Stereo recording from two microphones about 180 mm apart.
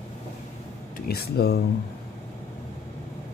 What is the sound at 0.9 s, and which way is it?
Speech, 60° left (ahead or behind).